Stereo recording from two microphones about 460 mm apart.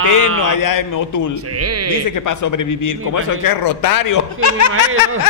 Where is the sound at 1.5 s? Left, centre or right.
Right.